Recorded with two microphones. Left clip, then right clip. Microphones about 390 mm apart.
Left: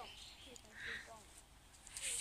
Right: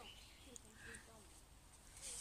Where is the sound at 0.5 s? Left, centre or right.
Left.